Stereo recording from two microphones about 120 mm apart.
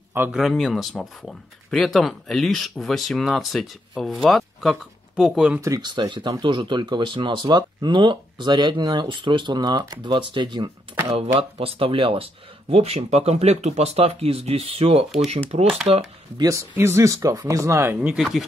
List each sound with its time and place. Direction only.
0.3 s speech: centre (ahead or behind)
5.6 s speech: 30° right (ahead or behind); by 16.0 s 50° right (ahead or behind)
16.3 s speech: 25° right (ahead or behind)
18.0 s speech: 5° right (ahead or behind)